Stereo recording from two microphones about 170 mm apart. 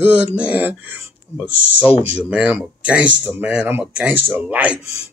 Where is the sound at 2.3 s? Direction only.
10° right (ahead or behind).